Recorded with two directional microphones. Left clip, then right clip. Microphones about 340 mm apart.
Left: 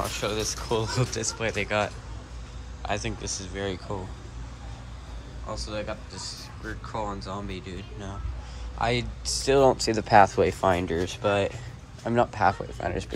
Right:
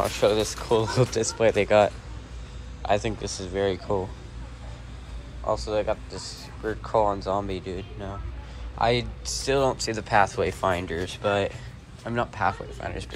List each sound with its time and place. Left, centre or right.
0.0 s speech: centre
5.5 s speech: centre; by 13.1 s left